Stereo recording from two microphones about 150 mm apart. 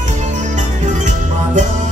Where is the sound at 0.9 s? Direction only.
55° right (ahead or behind).